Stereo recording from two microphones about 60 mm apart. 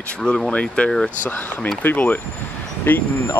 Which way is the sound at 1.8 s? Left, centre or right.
Left.